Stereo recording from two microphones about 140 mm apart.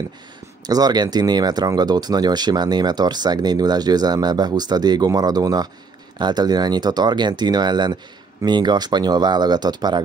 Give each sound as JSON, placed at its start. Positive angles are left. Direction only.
{"t": 0.7, "sound": "speech", "side_deg": -30}